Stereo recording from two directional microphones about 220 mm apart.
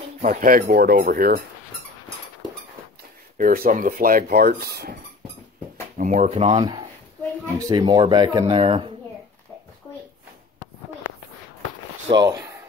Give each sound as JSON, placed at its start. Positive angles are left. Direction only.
{"t": 0.2, "sound": "speech", "side_deg": -35}
{"t": 3.3, "sound": "speech", "side_deg": -40}
{"t": 5.9, "sound": "speech", "side_deg": -35}
{"t": 12.1, "sound": "speech", "side_deg": -15}